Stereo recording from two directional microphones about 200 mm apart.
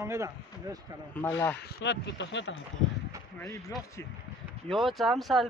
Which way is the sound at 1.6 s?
55° left (ahead or behind).